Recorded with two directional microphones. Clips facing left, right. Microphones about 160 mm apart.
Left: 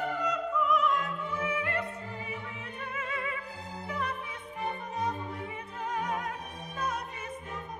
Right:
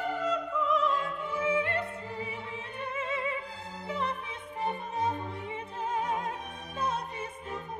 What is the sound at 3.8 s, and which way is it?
Opera, 25° right (ahead or behind).